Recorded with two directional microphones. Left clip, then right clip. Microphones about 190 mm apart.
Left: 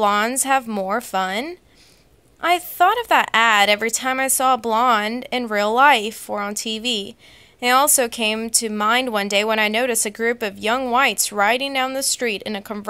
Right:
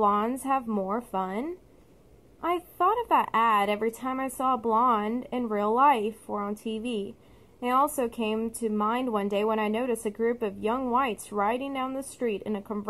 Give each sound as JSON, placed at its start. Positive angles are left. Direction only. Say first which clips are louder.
{"t": 0.0, "sound": "speech", "louder": "left 7 dB", "side_deg": 15}